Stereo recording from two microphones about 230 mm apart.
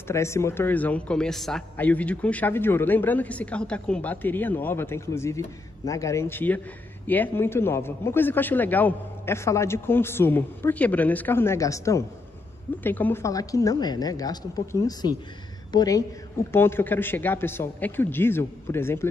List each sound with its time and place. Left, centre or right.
0.1 s a man's voice: centre